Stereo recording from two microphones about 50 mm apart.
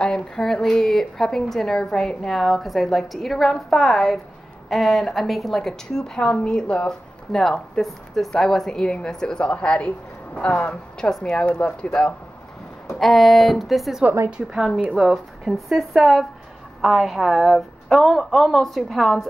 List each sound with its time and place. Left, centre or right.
0.0 s a woman's voice: centre
10.7 s speech: centre
13.0 s a woman's voice: centre
14.3 s a woman's voice: centre